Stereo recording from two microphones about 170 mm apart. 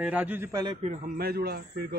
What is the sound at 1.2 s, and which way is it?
Speech, 65° right (ahead or behind).